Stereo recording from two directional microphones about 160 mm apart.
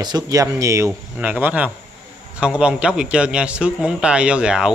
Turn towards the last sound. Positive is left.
turn(degrees=-5)  # may be behind; listen again after turning